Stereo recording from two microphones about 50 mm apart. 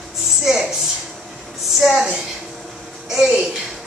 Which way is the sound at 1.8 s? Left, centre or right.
Centre.